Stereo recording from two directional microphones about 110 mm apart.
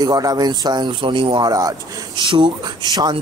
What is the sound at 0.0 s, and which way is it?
Speech, 35° right (ahead or behind).